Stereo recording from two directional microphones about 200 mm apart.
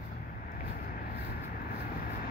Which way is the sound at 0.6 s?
45° left (ahead or behind).